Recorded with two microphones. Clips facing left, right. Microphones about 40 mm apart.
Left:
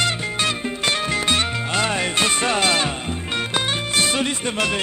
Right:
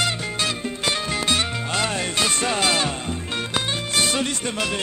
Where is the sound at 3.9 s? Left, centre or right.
Centre.